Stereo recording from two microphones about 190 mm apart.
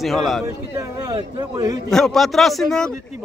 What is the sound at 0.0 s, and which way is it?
Speech, centre (ahead or behind).